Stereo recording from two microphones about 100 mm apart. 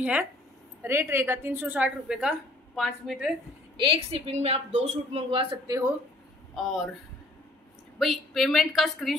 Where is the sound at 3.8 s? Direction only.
75° right (ahead or behind).